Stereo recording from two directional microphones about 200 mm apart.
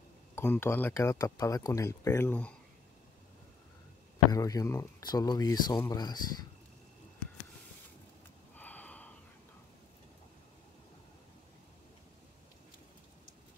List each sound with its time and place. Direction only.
0.4 s speech: 10° left (ahead or behind)
4.3 s speech: 15° left (ahead or behind)
8.5 s a sound: 10° left (ahead or behind)